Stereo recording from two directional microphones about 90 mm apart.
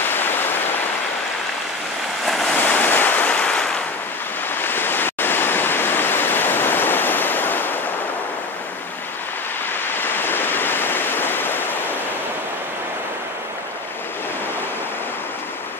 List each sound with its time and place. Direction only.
0.1 s waves: 25° left (ahead or behind)
2.2 s waves: centre (ahead or behind)
2.6 s waves: 20° left (ahead or behind)
10.0 s waves: 25° left (ahead or behind)